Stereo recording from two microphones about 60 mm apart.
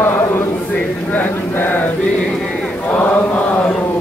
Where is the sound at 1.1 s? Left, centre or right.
Left.